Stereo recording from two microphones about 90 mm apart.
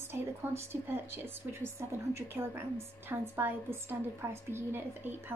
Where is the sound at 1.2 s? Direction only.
30° right (ahead or behind).